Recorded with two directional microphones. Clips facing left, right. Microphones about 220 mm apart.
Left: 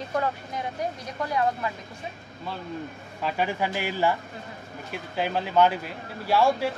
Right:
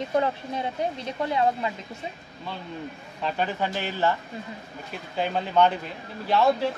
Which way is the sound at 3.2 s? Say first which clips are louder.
Even; 10° left (ahead or behind).